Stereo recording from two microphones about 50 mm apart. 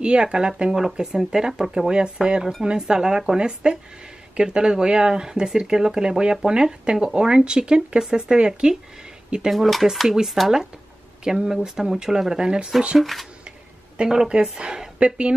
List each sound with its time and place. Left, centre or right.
0.0 s speech: centre
9.5 s speech: centre
13.0 s speech: centre
13.9 s speech: centre